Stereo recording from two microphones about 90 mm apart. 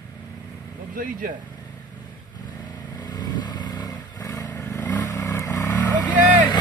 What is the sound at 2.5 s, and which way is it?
Vehicle, 50° left (ahead or behind).